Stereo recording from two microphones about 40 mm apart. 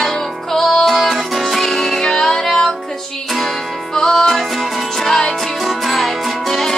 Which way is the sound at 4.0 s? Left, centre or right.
Centre.